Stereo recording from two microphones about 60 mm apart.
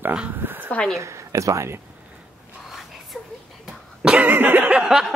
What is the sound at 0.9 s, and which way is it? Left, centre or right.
Speech, right.